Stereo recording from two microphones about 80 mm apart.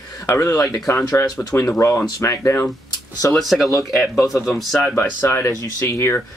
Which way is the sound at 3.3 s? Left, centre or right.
Centre.